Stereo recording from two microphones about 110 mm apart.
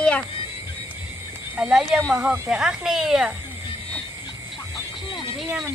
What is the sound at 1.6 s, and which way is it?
Speech, 5° right (ahead or behind).